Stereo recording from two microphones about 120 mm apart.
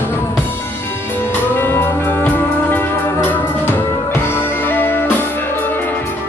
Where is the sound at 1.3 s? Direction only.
20° left (ahead or behind).